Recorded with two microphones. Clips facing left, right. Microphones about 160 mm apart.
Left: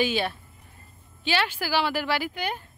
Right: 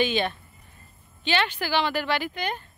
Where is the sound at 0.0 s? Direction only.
5° left (ahead or behind).